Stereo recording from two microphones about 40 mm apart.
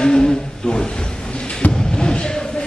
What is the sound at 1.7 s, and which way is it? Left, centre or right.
Basketball bounce, left.